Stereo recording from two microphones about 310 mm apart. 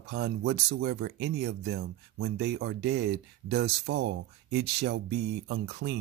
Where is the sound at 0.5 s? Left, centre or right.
Right.